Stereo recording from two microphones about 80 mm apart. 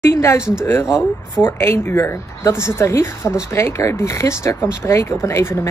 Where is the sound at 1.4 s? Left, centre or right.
Left.